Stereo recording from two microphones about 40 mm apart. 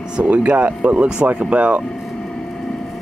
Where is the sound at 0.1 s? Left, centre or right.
Right.